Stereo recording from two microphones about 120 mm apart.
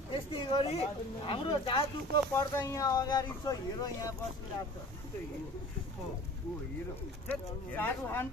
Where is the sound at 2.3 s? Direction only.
30° left (ahead or behind).